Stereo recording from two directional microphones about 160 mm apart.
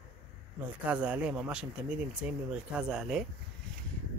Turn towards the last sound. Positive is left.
turn(degrees=-5)  # may be behind; listen again after turning